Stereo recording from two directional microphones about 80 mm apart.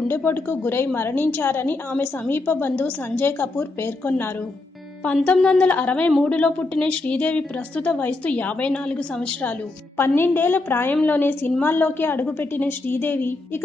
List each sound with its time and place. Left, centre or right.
0.1 s a woman's voice: left
5.0 s a woman's voice: centre